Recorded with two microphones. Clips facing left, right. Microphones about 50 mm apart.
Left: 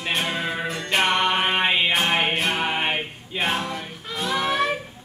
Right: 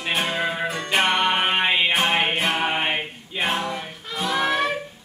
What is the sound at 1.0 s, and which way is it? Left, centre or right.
Music, right.